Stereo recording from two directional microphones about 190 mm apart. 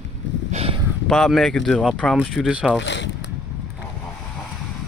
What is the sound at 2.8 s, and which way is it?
Speech, 70° left (ahead or behind).